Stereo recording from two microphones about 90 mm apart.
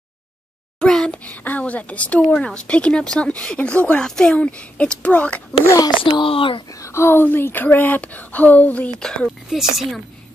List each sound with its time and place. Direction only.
0.7 s speech: 10° left (ahead or behind)
6.0 s speech: 75° left (ahead or behind)
6.7 s speech: 35° left (ahead or behind); by 9.3 s 10° left (ahead or behind)
9.5 s speech: centre (ahead or behind)